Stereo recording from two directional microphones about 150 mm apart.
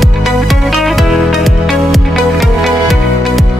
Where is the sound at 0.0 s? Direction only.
Centre (ahead or behind).